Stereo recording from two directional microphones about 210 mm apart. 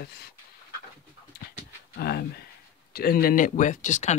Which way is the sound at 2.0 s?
50° left (ahead or behind).